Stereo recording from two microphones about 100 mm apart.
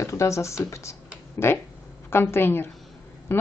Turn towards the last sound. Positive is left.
turn(degrees=25)  # may be behind; listen again after turning